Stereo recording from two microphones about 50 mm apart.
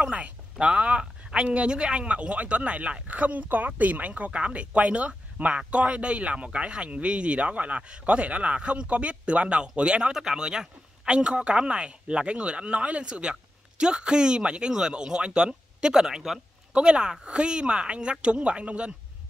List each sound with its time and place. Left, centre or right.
0.0 s speech: right